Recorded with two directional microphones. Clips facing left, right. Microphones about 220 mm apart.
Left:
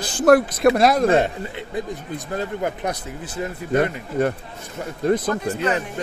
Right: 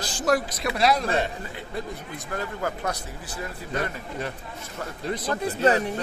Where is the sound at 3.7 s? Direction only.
55° left (ahead or behind).